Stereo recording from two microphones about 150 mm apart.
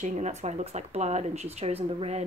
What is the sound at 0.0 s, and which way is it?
Speech, 50° right (ahead or behind).